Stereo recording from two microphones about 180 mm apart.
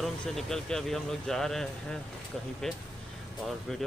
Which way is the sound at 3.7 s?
Centre (ahead or behind).